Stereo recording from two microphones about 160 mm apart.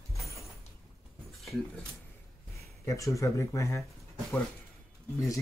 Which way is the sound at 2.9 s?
20° left (ahead or behind).